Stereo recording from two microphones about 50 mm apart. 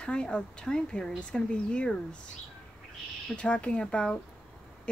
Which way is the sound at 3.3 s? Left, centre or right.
Left.